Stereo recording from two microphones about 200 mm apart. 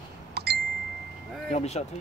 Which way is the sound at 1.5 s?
35° left (ahead or behind).